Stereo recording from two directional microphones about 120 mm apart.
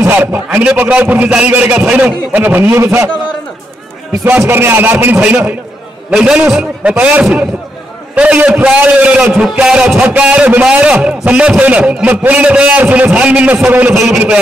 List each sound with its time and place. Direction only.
0.0 s a man's voice: 15° right (ahead or behind)
4.2 s a man's voice: 20° right (ahead or behind)